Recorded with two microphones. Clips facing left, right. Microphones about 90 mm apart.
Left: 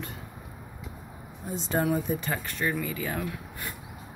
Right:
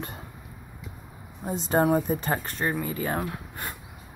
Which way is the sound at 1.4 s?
50° right (ahead or behind).